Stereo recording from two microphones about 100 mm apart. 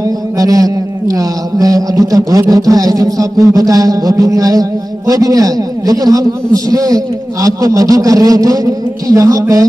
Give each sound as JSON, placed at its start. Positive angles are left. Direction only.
{"t": 0.4, "sound": "music", "side_deg": -35}